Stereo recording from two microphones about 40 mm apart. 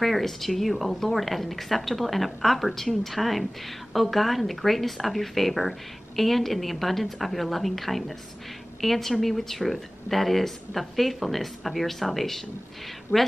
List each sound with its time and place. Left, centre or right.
0.0 s a woman's voice: centre
13.1 s a woman's voice: left